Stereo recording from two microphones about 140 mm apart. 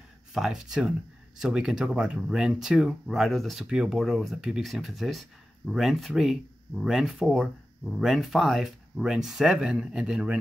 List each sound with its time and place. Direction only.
0.3 s speech: 5° right (ahead or behind)